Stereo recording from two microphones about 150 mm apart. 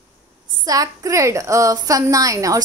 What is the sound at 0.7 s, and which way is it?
A woman's voice, 25° right (ahead or behind).